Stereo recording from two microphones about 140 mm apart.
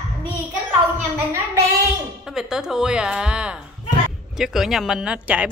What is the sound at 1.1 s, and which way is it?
Speech, 15° right (ahead or behind).